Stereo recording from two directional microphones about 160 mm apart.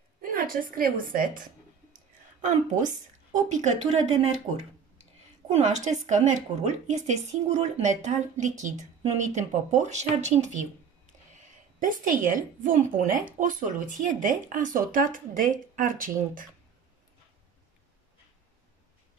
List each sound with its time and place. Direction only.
0.2 s a woman's voice: 60° right (ahead or behind)
2.4 s a woman's voice: 50° right (ahead or behind)
5.5 s a woman's voice: 50° right (ahead or behind)
11.8 s speech: 55° right (ahead or behind)